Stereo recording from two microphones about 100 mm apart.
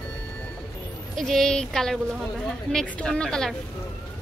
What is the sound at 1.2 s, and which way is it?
A woman's voice, 5° left (ahead or behind).